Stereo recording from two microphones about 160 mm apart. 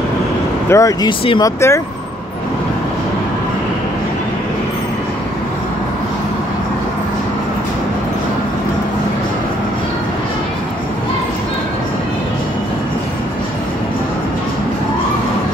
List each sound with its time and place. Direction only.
0.7 s speech: 20° left (ahead or behind)